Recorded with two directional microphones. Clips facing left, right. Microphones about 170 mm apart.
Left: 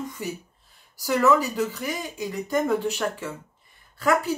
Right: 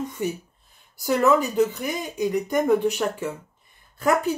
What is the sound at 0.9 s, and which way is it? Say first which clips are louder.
Speech: right 1 dB; 20° right (ahead or behind).